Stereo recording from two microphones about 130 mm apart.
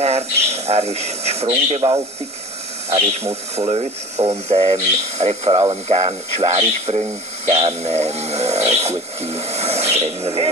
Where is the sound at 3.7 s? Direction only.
50° right (ahead or behind).